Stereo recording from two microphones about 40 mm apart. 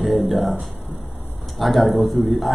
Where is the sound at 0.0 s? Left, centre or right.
Centre.